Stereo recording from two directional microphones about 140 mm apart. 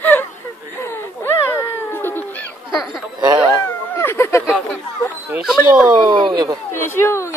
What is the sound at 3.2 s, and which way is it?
Cat, 30° right (ahead or behind).